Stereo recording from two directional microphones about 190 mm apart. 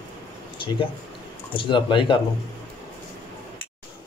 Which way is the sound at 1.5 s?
25° left (ahead or behind).